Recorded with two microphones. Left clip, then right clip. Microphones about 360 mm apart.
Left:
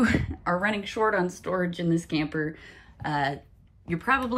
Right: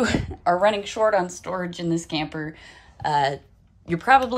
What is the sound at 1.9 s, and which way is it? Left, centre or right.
Speech, centre.